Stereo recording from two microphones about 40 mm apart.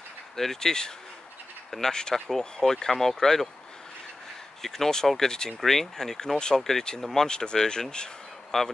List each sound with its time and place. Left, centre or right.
0.4 s speech: centre
4.6 s speech: centre
7.2 s speech: left